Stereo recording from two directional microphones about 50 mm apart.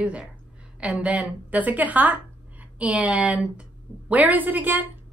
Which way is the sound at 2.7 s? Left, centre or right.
Right.